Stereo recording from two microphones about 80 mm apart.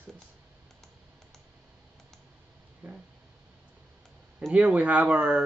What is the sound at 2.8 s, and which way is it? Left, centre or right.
Speech, right.